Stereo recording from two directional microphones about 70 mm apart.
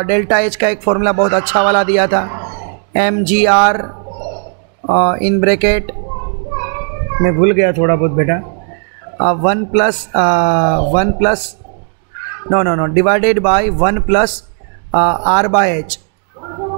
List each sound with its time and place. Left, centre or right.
0.0 s a man's voice: right
4.9 s a man's voice: right
7.3 s speech: right
9.2 s a man's voice: right
12.4 s a man's voice: right